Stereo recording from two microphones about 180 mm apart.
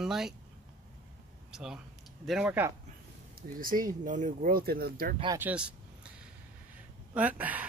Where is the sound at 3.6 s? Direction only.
50° right (ahead or behind).